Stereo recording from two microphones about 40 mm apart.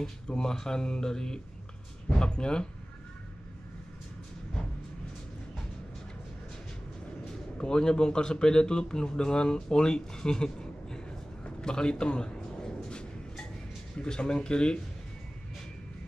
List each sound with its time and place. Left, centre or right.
0.0 s speech: centre
7.2 s a man's voice: left
11.6 s a sound: centre
13.9 s speech: left